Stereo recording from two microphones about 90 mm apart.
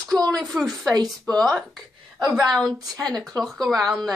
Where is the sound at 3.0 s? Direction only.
45° right (ahead or behind).